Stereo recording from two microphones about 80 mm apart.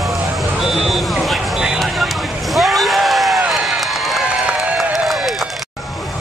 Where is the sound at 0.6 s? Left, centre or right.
Centre.